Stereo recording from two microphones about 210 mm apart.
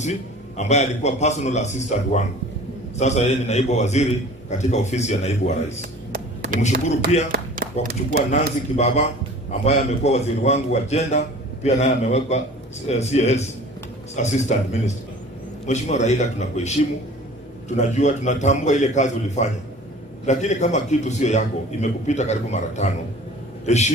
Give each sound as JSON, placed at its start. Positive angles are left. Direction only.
{"t": 0.0, "sound": "a man's voice", "side_deg": 35}
{"t": 5.8, "sound": "a sound", "side_deg": -50}
{"t": 7.1, "sound": "a man's voice", "side_deg": 30}
{"t": 7.8, "sound": "speech", "side_deg": -45}
{"t": 8.3, "sound": "a man's voice", "side_deg": 30}